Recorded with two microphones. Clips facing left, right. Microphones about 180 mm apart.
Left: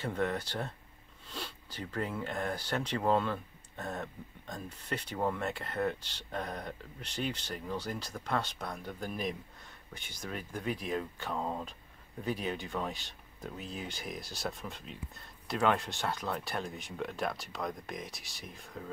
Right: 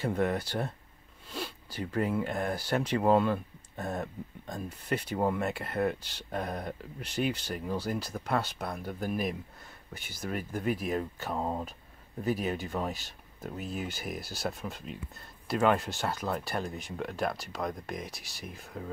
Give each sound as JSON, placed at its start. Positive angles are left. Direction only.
{"t": 0.0, "sound": "speech", "side_deg": -10}
{"t": 11.3, "sound": "speech", "side_deg": -20}
{"t": 12.2, "sound": "speech", "side_deg": -5}